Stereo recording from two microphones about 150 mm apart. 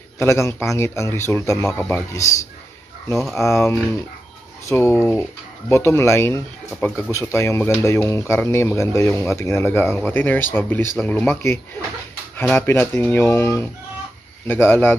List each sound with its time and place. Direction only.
0.2 s speech: 20° left (ahead or behind)
3.3 s speech: 20° left (ahead or behind)